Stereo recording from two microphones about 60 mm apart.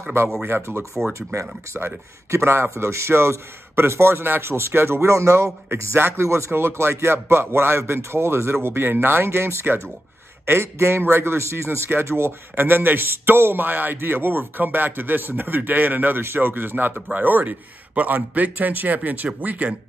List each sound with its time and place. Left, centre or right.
0.2 s a man's voice: right
2.3 s a man's voice: right
5.9 s a man's voice: right